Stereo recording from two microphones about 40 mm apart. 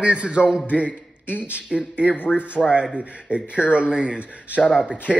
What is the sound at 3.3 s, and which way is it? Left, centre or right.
Speech, right.